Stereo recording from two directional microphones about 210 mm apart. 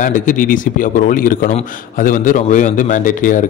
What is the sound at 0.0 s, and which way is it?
Speech, 40° left (ahead or behind).